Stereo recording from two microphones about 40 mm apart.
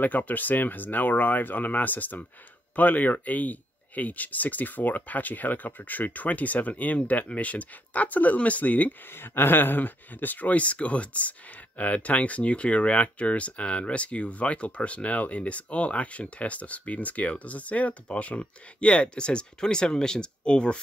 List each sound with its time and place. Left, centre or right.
0.0 s speech: left
9.1 s speech: left
10.5 s speech: left